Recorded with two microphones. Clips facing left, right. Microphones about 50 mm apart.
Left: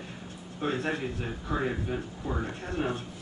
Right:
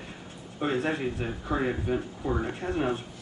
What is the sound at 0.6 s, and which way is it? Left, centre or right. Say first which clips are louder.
Speech: right 3 dB; centre.